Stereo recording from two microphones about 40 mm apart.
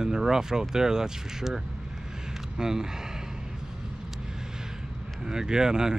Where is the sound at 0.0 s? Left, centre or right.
Centre.